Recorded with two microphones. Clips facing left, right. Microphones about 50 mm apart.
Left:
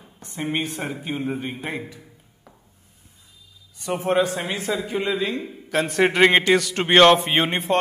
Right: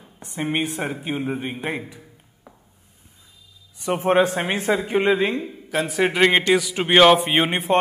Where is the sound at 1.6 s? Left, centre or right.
Centre.